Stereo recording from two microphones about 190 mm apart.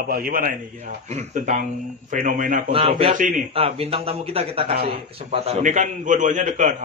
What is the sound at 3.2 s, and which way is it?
Speech, 45° right (ahead or behind).